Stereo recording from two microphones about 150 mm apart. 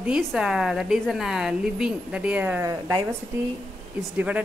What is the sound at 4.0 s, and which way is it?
Speech, 10° right (ahead or behind).